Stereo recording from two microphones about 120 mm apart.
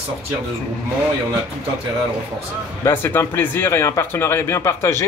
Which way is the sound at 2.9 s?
20° left (ahead or behind).